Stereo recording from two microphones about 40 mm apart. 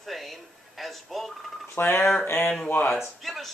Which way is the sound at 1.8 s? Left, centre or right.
Left.